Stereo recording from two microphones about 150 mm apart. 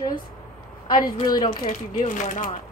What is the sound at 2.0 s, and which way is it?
Speech, 55° left (ahead or behind).